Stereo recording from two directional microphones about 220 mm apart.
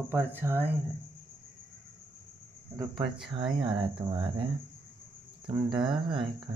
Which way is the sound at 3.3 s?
20° right (ahead or behind).